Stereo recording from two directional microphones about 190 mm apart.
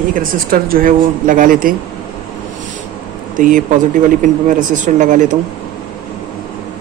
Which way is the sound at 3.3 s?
45° right (ahead or behind).